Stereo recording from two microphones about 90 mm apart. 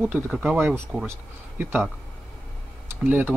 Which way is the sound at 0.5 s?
25° right (ahead or behind).